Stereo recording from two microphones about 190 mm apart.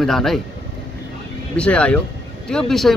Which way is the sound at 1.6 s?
5° left (ahead or behind).